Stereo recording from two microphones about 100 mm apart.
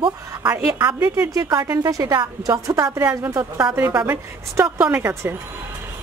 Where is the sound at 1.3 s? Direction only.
40° right (ahead or behind).